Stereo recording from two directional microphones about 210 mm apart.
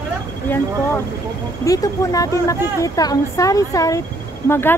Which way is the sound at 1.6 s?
15° left (ahead or behind).